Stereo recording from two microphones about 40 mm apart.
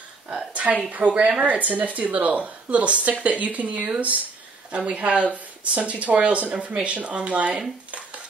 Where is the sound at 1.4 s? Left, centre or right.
Right.